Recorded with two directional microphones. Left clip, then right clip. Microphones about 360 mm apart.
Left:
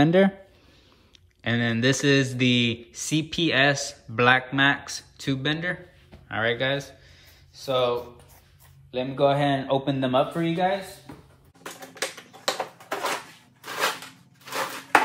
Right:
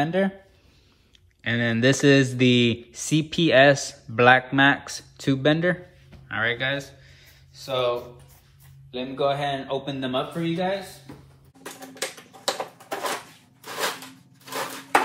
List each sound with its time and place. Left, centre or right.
1.4 s speech: centre
8.9 s a man's voice: left
11.6 s typewriter: centre
14.4 s a sound: centre